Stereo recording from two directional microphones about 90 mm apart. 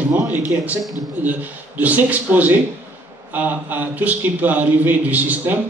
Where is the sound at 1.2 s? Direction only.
20° right (ahead or behind).